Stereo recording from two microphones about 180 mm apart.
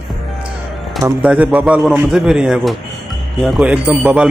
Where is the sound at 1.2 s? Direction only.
5° right (ahead or behind).